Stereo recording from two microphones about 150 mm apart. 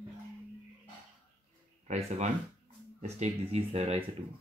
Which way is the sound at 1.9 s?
50° right (ahead or behind).